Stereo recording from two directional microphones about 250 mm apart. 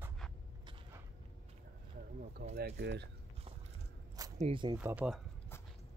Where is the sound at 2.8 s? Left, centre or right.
Right.